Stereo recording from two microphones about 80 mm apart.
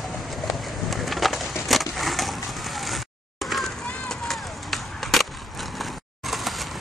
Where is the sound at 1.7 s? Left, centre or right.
Centre.